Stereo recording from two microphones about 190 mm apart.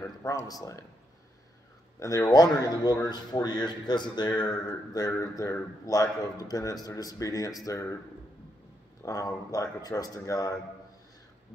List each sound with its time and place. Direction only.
0.0 s a man's voice: 15° left (ahead or behind)
2.0 s a man's voice: 15° left (ahead or behind)
9.0 s a man's voice: 15° left (ahead or behind)